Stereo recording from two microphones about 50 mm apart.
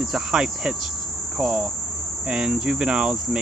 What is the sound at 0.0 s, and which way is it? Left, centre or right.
Cricket, centre.